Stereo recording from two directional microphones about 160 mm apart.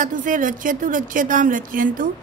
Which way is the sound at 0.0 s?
55° right (ahead or behind).